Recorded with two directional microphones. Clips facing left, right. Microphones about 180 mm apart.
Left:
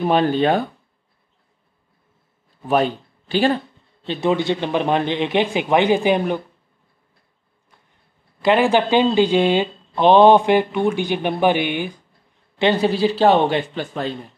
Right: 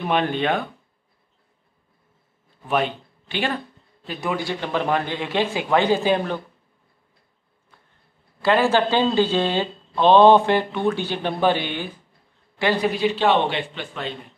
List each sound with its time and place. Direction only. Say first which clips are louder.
0.0 s a man's voice: left 5 dB; 35° left (ahead or behind)
2.7 s speech: left 4 dB; 35° left (ahead or behind); by 6.4 s 15° left (ahead or behind)
8.4 s a man's voice: left 2 dB; 15° left (ahead or behind); by 14.1 s 40° left (ahead or behind)